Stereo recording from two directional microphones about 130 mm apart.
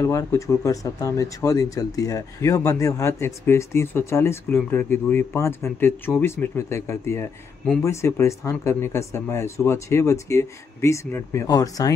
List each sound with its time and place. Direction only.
0.0 s speech: 20° left (ahead or behind)